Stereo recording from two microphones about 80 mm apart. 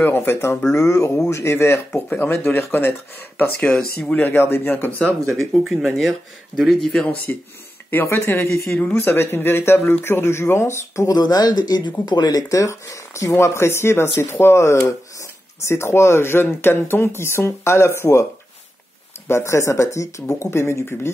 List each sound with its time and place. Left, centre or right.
0.0 s speech: left
3.5 s speech: centre
4.2 s speech: left
5.3 s speech: centre
6.9 s speech: centre
7.9 s speech: left
11.1 s speech: left
19.2 s speech: left